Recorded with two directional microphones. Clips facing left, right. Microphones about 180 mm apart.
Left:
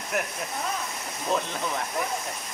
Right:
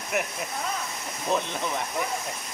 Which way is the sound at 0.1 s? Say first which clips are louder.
Right 1 dB; 5° right (ahead or behind).